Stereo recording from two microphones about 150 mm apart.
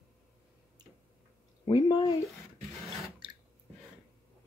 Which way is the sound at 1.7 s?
30° left (ahead or behind).